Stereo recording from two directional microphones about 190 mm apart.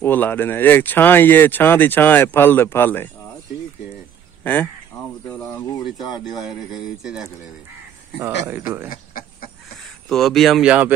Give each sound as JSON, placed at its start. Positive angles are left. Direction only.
{"t": 0.0, "sound": "speech", "side_deg": 10}
{"t": 4.4, "sound": "a sound", "side_deg": 10}
{"t": 5.9, "sound": "speech", "side_deg": 20}
{"t": 6.2, "sound": "speech", "side_deg": 0}
{"t": 8.5, "sound": "speech", "side_deg": -10}
{"t": 8.8, "sound": "a sound", "side_deg": 50}
{"t": 9.8, "sound": "speech", "side_deg": 0}